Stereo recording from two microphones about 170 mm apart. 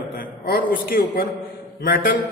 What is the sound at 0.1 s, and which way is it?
A man's voice, 55° left (ahead or behind).